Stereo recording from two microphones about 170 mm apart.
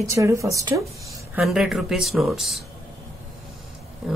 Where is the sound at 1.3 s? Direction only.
5° right (ahead or behind).